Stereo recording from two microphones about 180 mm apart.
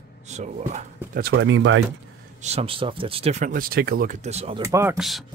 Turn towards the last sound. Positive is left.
turn(degrees=0)  # may be behind; listen again after turning